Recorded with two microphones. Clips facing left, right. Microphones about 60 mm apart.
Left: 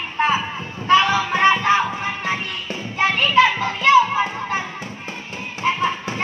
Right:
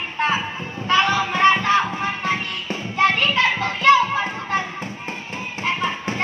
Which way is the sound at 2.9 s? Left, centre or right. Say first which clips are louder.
Left 2 dB; centre.